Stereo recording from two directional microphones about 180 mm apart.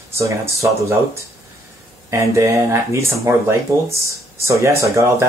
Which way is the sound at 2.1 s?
15° right (ahead or behind).